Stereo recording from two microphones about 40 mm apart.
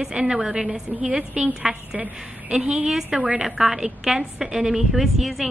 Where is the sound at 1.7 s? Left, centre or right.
Centre.